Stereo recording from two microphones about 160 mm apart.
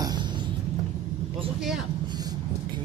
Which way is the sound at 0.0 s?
25° right (ahead or behind).